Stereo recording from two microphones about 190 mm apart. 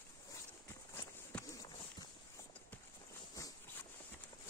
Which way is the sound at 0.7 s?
15° left (ahead or behind).